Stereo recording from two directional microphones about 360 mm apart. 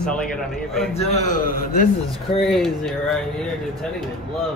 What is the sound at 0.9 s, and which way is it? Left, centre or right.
Speech, centre.